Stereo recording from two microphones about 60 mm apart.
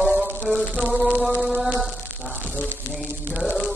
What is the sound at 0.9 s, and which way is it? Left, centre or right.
Mantra, centre.